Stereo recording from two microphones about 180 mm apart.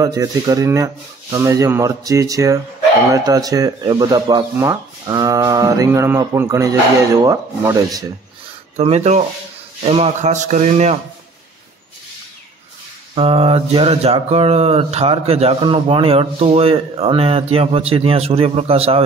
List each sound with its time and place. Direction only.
0.0 s speech: 20° right (ahead or behind)
8.7 s mantra: 35° right (ahead or behind)
13.1 s mantra: 30° right (ahead or behind)